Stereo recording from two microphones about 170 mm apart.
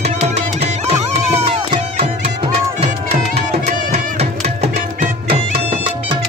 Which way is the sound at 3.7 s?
50° right (ahead or behind).